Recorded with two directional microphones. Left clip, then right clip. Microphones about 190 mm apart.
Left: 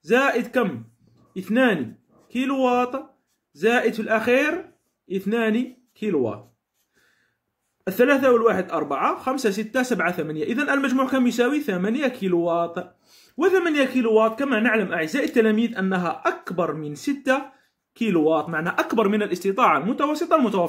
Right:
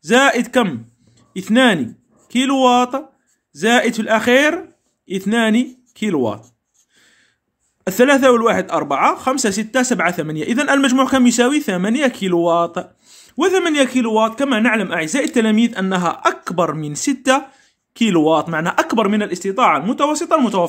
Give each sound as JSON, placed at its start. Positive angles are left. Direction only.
{"t": 0.0, "sound": "speech", "side_deg": -45}
{"t": 7.8, "sound": "speech", "side_deg": -45}